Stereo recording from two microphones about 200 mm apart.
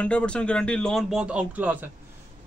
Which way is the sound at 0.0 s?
5° left (ahead or behind).